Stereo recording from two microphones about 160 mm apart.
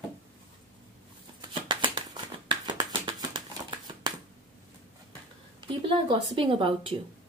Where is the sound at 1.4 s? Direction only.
30° right (ahead or behind).